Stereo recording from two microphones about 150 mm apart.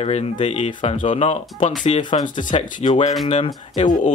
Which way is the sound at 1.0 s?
35° left (ahead or behind).